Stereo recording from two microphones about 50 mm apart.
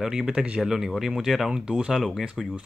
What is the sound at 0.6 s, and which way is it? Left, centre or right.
Speech, centre.